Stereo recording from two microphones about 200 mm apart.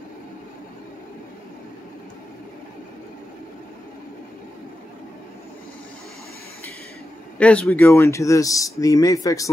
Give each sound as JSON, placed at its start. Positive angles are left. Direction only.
{"t": 7.3, "sound": "speech", "side_deg": 5}